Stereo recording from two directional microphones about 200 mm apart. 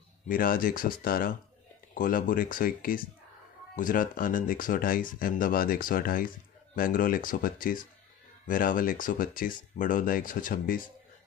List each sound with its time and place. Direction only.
0.3 s speech: 45° left (ahead or behind)